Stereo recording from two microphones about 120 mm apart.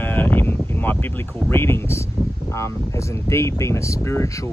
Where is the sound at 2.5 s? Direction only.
25° left (ahead or behind).